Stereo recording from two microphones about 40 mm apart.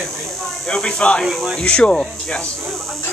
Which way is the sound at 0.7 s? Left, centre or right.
Centre.